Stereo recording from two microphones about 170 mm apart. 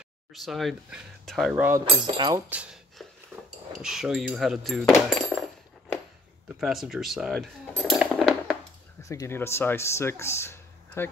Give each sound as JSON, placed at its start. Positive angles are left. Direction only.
{"t": 0.3, "sound": "speech", "side_deg": 0}
{"t": 1.5, "sound": "cutlery", "side_deg": -15}
{"t": 1.9, "sound": "speech", "side_deg": -30}
{"t": 2.5, "sound": "speech", "side_deg": -5}
{"t": 3.3, "sound": "a sound", "side_deg": -15}
{"t": 3.8, "sound": "speech", "side_deg": -5}
{"t": 6.6, "sound": "cutlery", "side_deg": 0}
{"t": 9.0, "sound": "speech", "side_deg": 20}